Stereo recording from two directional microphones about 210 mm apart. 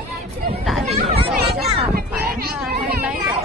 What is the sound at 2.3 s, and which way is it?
Children playing, 45° right (ahead or behind).